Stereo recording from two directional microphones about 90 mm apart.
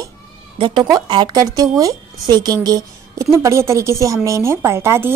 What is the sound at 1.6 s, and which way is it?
Speech, 40° right (ahead or behind).